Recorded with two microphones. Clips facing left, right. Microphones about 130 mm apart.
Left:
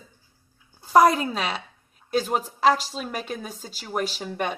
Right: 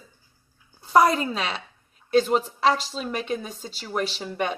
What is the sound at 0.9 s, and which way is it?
A woman's voice, 5° left (ahead or behind).